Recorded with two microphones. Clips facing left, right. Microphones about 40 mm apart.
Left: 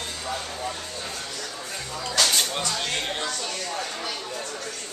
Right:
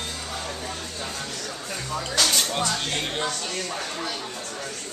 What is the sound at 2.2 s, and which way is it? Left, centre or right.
Music, centre.